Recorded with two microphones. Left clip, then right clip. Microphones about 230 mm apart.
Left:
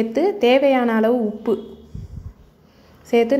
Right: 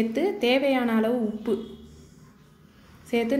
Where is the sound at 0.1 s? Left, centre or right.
Left.